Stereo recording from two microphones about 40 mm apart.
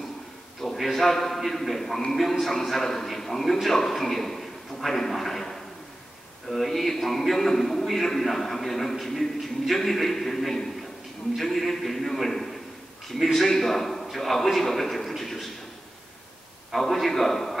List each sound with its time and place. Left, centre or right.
0.6 s a man's voice: centre
16.7 s a man's voice: centre